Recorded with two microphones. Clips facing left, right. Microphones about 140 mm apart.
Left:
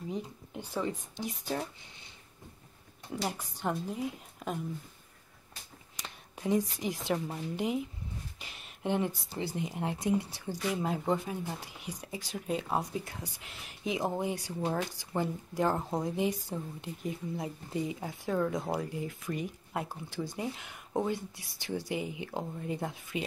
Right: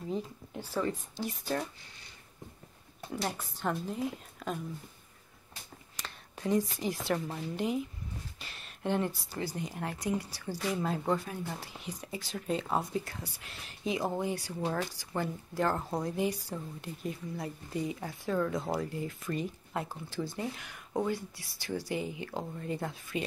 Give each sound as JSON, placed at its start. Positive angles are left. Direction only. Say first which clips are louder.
{"t": 0.2, "sound": "a woman's voice", "louder": "right 1 dB", "side_deg": 15}
{"t": 3.1, "sound": "a woman's voice", "louder": "even", "side_deg": 10}
{"t": 5.9, "sound": "a sound", "louder": "even", "side_deg": 15}
{"t": 7.5, "sound": "a woman's voice", "louder": "even", "side_deg": 15}